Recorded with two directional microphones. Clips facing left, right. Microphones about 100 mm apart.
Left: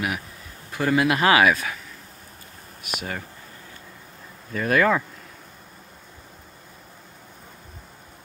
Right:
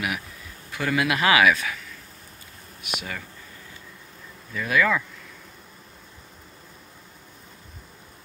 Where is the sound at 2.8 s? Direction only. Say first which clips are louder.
Left 2 dB; 40° left (ahead or behind).